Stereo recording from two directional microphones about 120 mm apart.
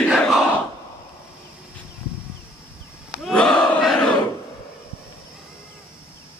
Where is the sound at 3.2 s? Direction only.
5° left (ahead or behind).